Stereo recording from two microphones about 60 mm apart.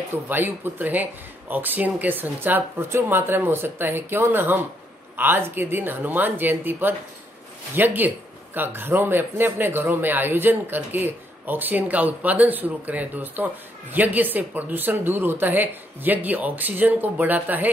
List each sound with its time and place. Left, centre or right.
0.3 s a man's voice: right